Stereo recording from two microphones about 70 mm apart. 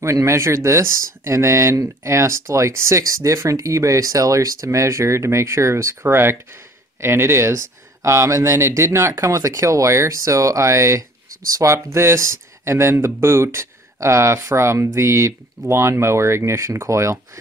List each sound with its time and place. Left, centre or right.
0.0 s speech: right
9.3 s speech: right